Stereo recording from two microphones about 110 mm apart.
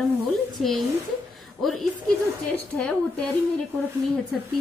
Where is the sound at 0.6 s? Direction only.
Centre (ahead or behind).